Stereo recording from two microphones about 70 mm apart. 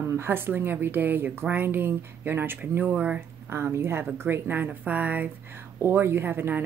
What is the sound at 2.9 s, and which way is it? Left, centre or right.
Speech, centre.